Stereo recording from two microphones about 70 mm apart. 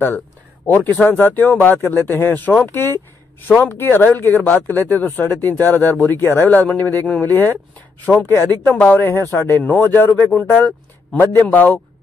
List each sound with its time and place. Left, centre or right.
0.7 s speech: left
9.1 s speech: left
11.4 s speech: left